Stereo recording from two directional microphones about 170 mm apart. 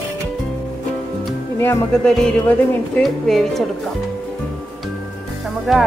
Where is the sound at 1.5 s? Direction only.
15° left (ahead or behind).